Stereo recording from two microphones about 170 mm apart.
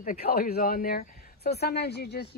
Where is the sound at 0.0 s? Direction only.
60° left (ahead or behind).